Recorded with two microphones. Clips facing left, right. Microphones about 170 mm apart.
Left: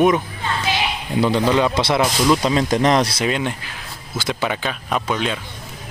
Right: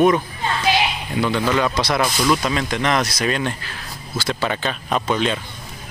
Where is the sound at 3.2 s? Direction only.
15° left (ahead or behind).